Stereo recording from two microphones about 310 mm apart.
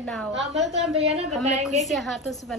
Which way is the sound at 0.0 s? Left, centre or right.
Centre.